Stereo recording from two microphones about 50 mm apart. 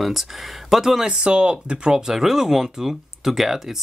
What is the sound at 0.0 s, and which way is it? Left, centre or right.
Speech, centre.